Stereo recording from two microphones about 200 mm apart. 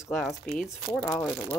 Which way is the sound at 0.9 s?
10° left (ahead or behind).